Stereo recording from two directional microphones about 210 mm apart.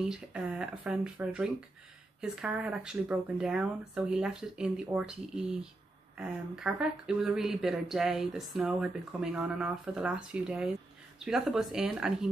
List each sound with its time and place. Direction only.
0.0 s speech: 5° right (ahead or behind)